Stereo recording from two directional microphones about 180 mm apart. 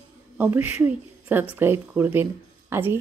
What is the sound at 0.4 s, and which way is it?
A woman's voice, 10° right (ahead or behind).